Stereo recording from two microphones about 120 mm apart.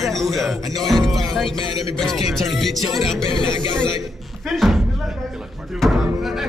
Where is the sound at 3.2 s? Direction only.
45° left (ahead or behind).